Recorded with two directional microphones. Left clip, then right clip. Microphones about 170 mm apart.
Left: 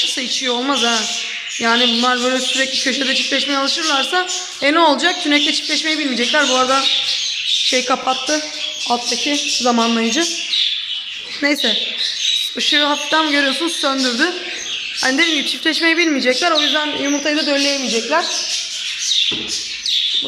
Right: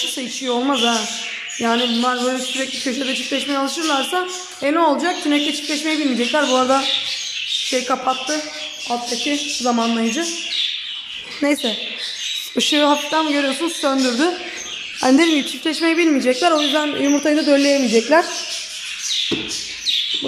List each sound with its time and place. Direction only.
0.5 s a man's voice: 5° right (ahead or behind)
12.5 s a man's voice: 15° right (ahead or behind)
15.0 s speech: 15° right (ahead or behind)
15.6 s speech: 5° right (ahead or behind); by 18.0 s 20° right (ahead or behind)